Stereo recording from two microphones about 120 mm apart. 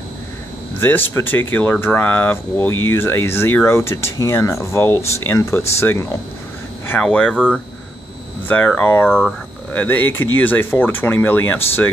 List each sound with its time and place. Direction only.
0.7 s speech: 15° left (ahead or behind)
7.0 s speech: 10° left (ahead or behind)
8.5 s speech: 10° left (ahead or behind)